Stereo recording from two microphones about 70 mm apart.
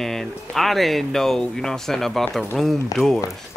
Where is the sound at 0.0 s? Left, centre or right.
Centre.